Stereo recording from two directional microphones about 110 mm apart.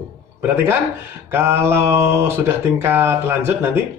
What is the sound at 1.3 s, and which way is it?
Speech, 20° right (ahead or behind).